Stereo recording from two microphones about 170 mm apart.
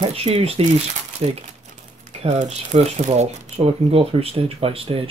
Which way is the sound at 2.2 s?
40° right (ahead or behind).